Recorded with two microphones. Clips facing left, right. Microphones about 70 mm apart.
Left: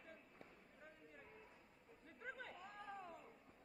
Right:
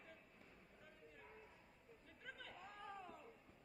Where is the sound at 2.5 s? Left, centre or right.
Centre.